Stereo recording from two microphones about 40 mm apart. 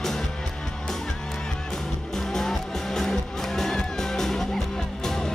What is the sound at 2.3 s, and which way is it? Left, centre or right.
Music, centre.